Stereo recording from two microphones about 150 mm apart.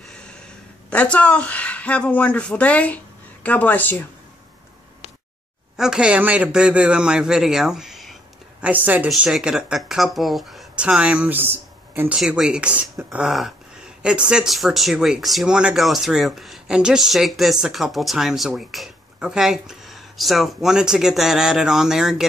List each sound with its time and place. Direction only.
0.1 s a sound: 5° left (ahead or behind)
0.8 s speech: 10° left (ahead or behind)
5.8 s a man's voice: 5° right (ahead or behind)